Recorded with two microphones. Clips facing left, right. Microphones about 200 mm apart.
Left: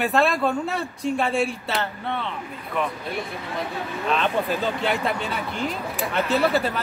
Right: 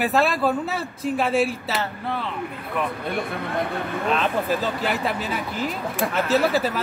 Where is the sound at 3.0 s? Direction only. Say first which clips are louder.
Right 4 dB; 55° right (ahead or behind).